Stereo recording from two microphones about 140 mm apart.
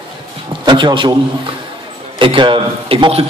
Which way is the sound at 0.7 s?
35° right (ahead or behind).